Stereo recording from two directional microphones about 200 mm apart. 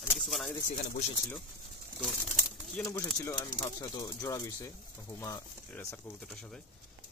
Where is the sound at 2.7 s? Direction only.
10° left (ahead or behind).